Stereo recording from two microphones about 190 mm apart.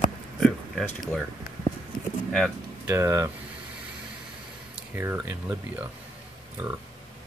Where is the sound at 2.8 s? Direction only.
15° right (ahead or behind).